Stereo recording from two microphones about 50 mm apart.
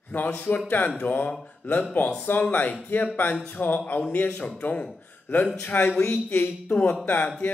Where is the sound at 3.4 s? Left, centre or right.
Left.